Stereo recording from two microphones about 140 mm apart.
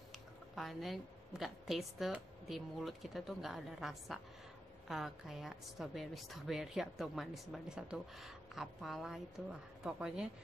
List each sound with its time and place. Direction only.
0.6 s a woman's voice: centre (ahead or behind)